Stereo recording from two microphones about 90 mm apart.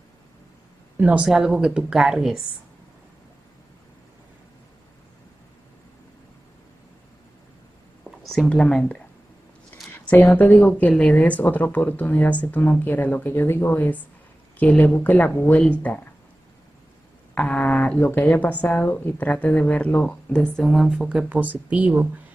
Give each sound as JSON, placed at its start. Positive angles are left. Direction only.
{"t": 0.9, "sound": "speech", "side_deg": -15}
{"t": 8.0, "sound": "a sound", "side_deg": 5}
{"t": 8.5, "sound": "speech", "side_deg": 10}
{"t": 9.9, "sound": "a woman's voice", "side_deg": 20}
{"t": 17.3, "sound": "a sound", "side_deg": 15}
{"t": 18.0, "sound": "speech", "side_deg": 20}